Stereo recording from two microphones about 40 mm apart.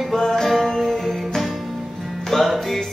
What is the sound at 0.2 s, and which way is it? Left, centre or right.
Music, centre.